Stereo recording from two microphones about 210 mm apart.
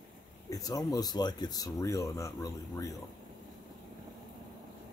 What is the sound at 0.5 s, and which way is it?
Speech, 15° left (ahead or behind).